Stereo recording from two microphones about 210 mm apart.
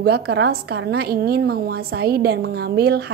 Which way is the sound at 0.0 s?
50° right (ahead or behind).